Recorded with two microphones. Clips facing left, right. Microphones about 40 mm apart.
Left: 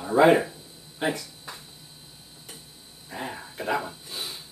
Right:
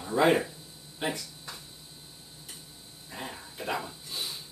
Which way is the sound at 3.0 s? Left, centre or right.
Centre.